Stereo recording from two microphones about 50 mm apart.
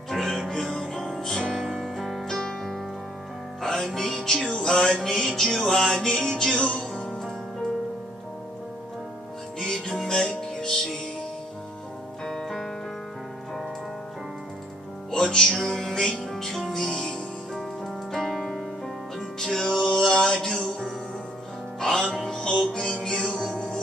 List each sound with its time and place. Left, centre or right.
0.1 s music: centre
2.2 s music: centre
9.6 s music: centre
12.3 s music: centre
15.0 s music: centre
18.1 s keyboard: centre
19.1 s music: centre
21.7 s music: centre